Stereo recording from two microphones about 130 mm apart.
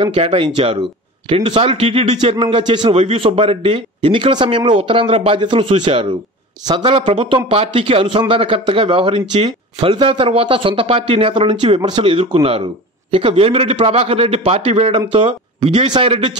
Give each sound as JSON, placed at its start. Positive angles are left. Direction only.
{"t": 0.0, "sound": "a man's voice", "side_deg": -50}